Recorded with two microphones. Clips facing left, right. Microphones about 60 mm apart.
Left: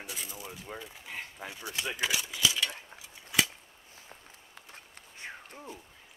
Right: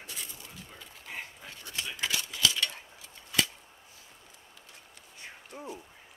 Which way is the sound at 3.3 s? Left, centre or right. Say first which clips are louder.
Left 1 dB; centre.